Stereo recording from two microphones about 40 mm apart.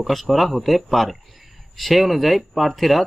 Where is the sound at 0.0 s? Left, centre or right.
Centre.